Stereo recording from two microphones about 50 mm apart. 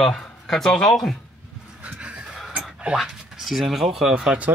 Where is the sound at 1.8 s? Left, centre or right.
Right.